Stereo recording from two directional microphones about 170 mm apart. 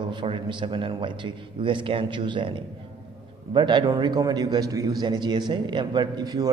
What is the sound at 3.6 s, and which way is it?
Speech, 25° right (ahead or behind).